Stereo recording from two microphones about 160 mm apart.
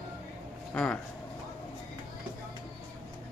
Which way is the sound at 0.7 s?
5° left (ahead or behind).